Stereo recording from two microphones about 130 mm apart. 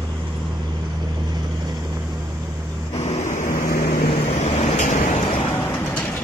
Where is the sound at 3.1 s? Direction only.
65° left (ahead or behind); by 3.8 s 85° left.